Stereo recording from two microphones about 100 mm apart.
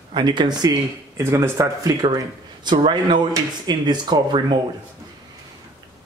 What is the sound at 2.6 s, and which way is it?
Speech, 50° right (ahead or behind).